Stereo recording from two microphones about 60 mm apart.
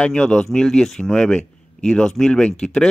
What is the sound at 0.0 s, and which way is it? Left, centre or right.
Speech, centre.